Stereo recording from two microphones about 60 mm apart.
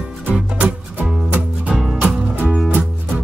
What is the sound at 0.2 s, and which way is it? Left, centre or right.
Music, right.